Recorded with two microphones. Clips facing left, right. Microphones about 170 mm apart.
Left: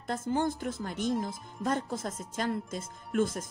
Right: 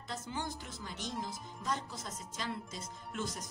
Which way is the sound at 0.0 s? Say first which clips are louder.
Left 11 dB; 50° left (ahead or behind).